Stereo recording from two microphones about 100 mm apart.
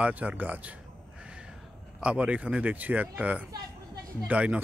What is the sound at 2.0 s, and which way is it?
Speech, 10° right (ahead or behind).